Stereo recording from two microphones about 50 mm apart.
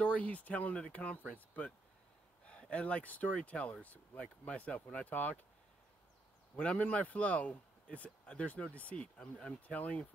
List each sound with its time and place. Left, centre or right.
0.0 s speech: left
6.6 s speech: left